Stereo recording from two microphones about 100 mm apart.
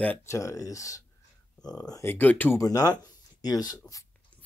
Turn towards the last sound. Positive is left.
turn(degrees=40)  # may be behind; listen again after turning